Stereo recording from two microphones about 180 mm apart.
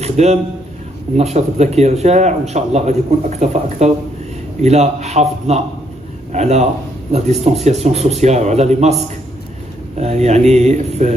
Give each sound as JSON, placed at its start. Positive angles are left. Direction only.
{"t": 0.0, "sound": "a man's voice", "side_deg": -35}